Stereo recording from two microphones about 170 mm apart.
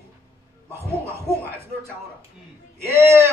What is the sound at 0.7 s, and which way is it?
Speech, 15° right (ahead or behind).